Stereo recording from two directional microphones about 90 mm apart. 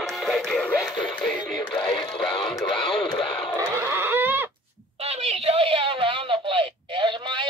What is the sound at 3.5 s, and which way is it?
Pig, 30° right (ahead or behind).